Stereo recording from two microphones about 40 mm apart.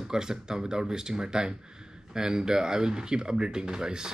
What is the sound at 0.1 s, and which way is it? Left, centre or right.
Speech, centre.